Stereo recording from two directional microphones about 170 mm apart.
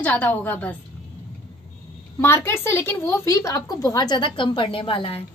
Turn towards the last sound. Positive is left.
turn(degrees=35)  # may be behind; listen again after turning